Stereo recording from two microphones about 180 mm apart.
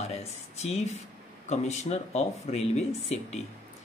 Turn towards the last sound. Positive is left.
turn(degrees=35)  # may be behind; listen again after turning